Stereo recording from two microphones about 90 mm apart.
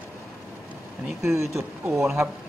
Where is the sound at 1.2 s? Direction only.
30° right (ahead or behind).